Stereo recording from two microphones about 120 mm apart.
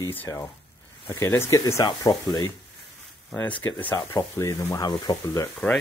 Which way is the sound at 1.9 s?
35° left (ahead or behind).